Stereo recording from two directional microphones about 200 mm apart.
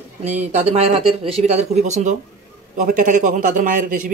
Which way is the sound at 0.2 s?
35° right (ahead or behind).